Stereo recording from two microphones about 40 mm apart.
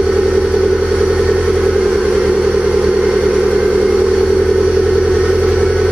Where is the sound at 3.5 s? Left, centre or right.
Right.